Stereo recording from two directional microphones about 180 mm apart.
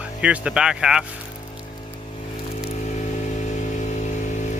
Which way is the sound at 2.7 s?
40° left (ahead or behind).